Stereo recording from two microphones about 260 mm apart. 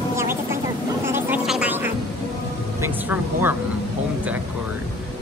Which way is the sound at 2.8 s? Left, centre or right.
Centre.